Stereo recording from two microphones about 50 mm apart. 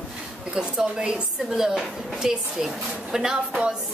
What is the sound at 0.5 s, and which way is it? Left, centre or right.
A woman's voice, centre.